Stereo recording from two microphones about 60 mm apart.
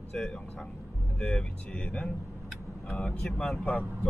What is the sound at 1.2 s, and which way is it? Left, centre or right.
Speech, centre.